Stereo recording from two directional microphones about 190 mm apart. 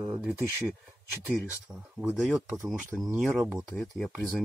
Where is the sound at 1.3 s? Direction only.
5° right (ahead or behind).